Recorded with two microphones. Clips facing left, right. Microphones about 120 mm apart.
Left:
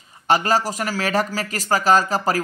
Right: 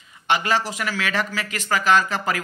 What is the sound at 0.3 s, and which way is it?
A man's voice, 40° left (ahead or behind).